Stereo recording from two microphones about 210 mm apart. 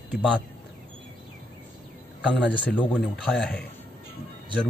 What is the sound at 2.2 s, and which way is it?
Speech, centre (ahead or behind).